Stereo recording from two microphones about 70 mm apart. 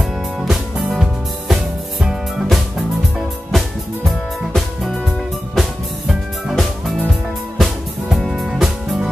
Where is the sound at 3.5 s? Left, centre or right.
Centre.